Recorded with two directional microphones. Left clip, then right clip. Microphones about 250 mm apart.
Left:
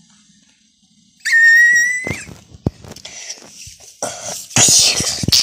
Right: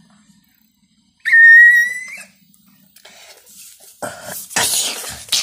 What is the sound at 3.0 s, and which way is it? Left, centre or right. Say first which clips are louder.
Vehicle: left 9 dB; centre.